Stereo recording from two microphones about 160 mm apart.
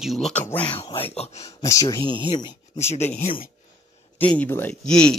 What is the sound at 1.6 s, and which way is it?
Speech, 20° left (ahead or behind).